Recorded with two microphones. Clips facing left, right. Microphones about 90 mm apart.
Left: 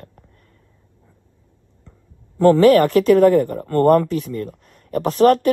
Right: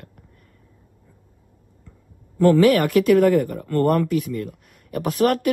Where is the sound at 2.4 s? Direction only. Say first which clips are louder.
Left 4 dB; 40° left (ahead or behind).